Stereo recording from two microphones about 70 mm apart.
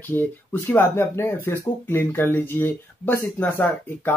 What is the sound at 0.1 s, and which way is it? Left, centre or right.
Speech, left.